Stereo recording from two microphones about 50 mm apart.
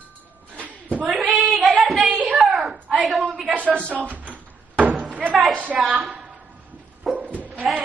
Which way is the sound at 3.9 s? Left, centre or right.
Right.